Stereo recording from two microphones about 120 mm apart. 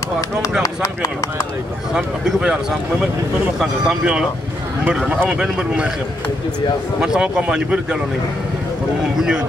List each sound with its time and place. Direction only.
0.4 s speech: 30° left (ahead or behind)
2.0 s speech: 5° right (ahead or behind)
3.5 s speech: 5° right (ahead or behind)
5.3 s speech: 5° right (ahead or behind)
7.2 s speech: 5° right (ahead or behind)